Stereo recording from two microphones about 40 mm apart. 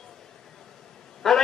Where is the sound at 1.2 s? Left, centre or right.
Centre.